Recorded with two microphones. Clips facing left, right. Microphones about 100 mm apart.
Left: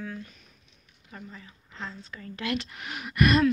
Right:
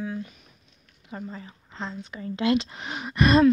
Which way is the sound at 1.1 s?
30° right (ahead or behind).